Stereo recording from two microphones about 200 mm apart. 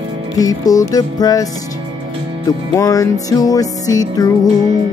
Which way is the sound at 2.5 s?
15° left (ahead or behind).